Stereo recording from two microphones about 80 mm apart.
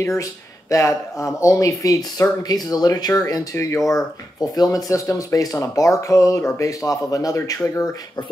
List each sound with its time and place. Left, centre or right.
0.0 s speech: left